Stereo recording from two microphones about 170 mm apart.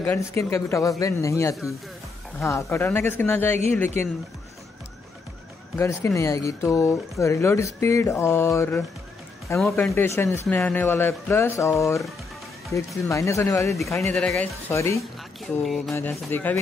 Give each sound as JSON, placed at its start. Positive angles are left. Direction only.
{"t": 0.0, "sound": "speech", "side_deg": 15}
{"t": 5.8, "sound": "speech", "side_deg": 15}
{"t": 15.6, "sound": "a sound", "side_deg": 0}
{"t": 15.9, "sound": "speech", "side_deg": 15}